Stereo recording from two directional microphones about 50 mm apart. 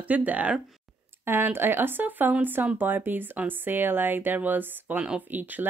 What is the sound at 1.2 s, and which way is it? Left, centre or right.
Speech, right.